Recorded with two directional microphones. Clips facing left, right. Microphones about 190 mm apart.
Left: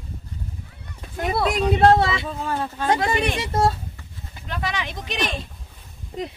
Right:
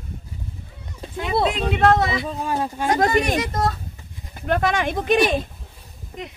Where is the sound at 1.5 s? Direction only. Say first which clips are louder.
Left 5 dB; 35° left (ahead or behind).